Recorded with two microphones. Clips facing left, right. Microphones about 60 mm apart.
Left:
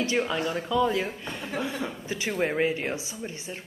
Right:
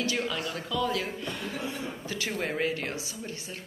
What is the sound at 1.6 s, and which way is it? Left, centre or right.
Speech, left.